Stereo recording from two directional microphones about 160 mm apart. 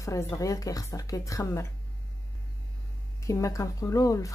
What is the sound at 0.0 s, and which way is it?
A woman's voice, 20° left (ahead or behind).